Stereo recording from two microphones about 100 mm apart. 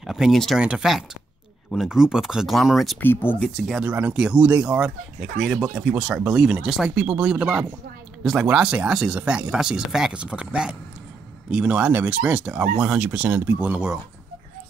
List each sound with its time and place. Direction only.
0.0 s speech: 5° right (ahead or behind)
0.6 s speech: 10° right (ahead or behind)
3.0 s speech: 20° left (ahead or behind)
3.4 s speech: 5° left (ahead or behind)
3.8 s speech: 15° right (ahead or behind)